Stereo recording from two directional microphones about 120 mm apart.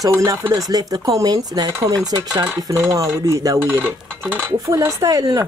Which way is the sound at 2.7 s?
25° right (ahead or behind).